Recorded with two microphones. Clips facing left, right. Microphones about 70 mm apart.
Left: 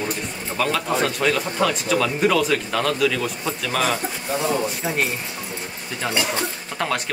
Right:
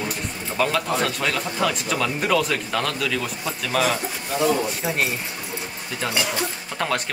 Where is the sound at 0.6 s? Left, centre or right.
Centre.